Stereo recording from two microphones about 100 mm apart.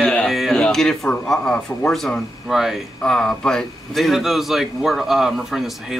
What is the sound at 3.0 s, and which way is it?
A man's voice, 10° left (ahead or behind).